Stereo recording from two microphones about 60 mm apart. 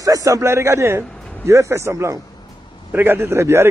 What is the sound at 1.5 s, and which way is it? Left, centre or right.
Speech, right.